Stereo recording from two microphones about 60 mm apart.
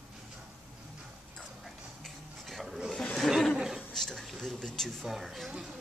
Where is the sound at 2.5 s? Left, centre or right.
Centre.